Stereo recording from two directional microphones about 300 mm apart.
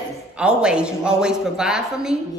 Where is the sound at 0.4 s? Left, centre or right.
Centre.